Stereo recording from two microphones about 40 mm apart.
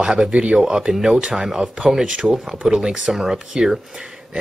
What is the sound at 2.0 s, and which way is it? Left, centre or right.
Speech, right.